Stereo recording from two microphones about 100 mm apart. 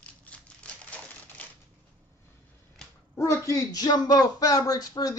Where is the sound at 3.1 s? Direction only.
30° left (ahead or behind).